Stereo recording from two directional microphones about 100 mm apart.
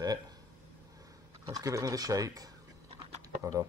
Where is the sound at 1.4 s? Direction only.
35° right (ahead or behind).